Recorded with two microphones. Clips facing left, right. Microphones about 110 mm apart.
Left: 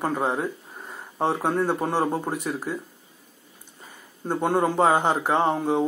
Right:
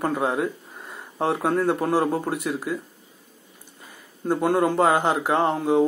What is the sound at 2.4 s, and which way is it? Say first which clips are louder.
Speech: right 2 dB; 30° left (ahead or behind).